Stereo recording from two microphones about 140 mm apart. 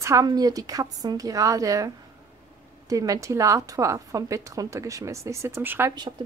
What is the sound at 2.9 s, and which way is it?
A woman's voice, 25° right (ahead or behind).